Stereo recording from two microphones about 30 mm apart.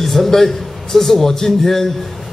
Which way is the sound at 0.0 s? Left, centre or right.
Centre.